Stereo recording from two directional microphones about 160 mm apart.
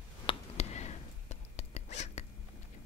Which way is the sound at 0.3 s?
45° left (ahead or behind).